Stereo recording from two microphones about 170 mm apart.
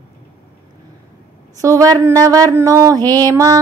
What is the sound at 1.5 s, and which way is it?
A woman's voice, 20° right (ahead or behind).